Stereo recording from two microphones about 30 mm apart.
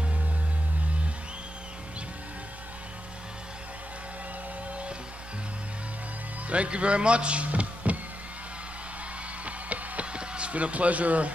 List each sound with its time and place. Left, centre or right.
6.5 s a man's voice: right
7.4 s a sound: right
9.4 s music: right
10.1 s speech: right